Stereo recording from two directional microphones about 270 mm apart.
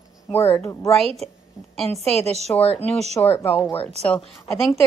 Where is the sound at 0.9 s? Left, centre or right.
Centre.